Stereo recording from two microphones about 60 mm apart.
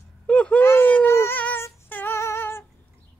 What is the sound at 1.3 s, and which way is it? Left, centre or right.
Female singing, left.